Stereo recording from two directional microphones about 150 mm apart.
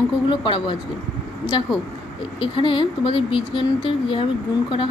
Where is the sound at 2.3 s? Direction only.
35° left (ahead or behind).